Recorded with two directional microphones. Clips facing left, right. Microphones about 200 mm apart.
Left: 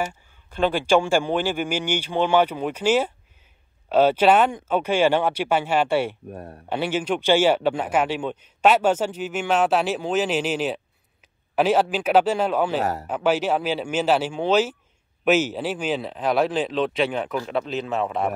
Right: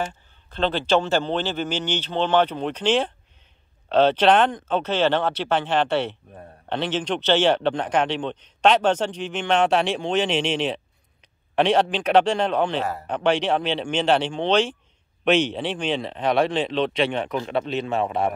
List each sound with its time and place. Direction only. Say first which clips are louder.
0.1 s a man's voice: left 1 dB; 10° left (ahead or behind)
6.3 s speech: left 6 dB; 90° left
6.7 s a man's voice: left 1 dB; 10° left (ahead or behind)